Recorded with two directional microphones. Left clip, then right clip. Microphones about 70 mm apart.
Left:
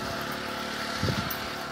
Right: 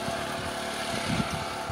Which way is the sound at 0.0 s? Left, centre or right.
Right.